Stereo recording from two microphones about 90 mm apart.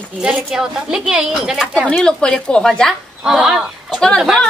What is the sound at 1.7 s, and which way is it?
Speech, 10° left (ahead or behind).